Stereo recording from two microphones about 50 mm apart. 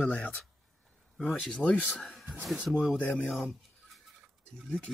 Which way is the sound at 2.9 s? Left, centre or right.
Left.